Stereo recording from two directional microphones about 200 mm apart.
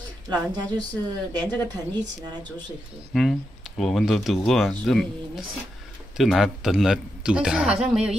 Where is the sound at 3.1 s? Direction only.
Centre (ahead or behind).